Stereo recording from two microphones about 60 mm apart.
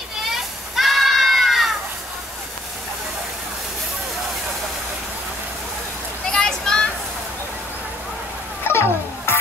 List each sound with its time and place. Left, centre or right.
0.3 s children playing: centre
6.2 s a sound: centre
8.6 s music: left